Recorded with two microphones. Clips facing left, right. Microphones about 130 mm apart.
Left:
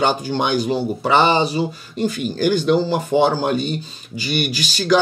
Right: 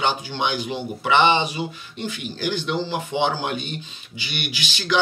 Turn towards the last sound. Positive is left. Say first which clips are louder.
# left 8 dB
turn(degrees=40)  # may be behind; listen again after turning